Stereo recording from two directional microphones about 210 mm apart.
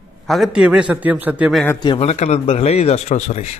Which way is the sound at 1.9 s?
30° left (ahead or behind).